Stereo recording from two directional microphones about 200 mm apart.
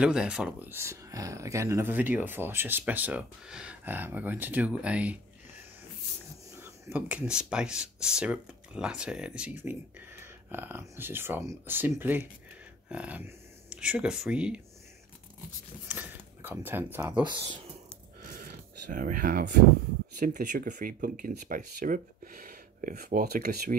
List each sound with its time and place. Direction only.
0.0 s speech: 5° right (ahead or behind)
6.6 s speech: 10° right (ahead or behind)
15.9 s speech: 10° right (ahead or behind)
17.1 s speech: 25° right (ahead or behind)
18.2 s a sound: 45° right (ahead or behind)
20.2 s speech: 40° right (ahead or behind)